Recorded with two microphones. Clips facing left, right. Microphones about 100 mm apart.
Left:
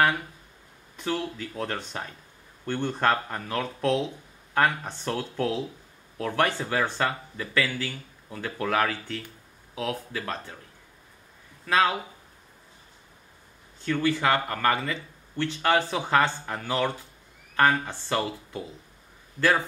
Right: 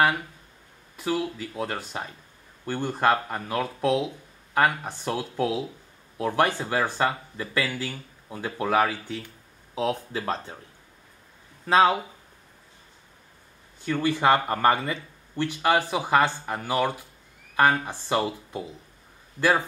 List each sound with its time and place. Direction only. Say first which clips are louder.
0.9 s speech: right 2 dB; 5° right (ahead or behind)
9.8 s speech: right 4 dB; 25° right (ahead or behind)
11.6 s speech: right 4 dB; 25° right (ahead or behind)
13.7 s speech: even; 10° right (ahead or behind)